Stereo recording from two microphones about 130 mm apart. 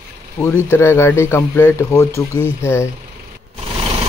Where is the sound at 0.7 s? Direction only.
20° left (ahead or behind).